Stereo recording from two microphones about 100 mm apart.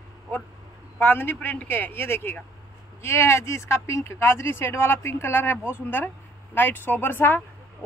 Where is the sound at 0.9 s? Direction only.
20° left (ahead or behind).